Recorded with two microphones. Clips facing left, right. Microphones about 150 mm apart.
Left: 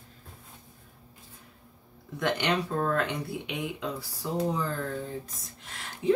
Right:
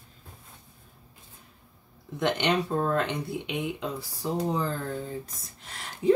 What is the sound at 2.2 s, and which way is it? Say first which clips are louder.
Speech: right 2 dB; 20° right (ahead or behind).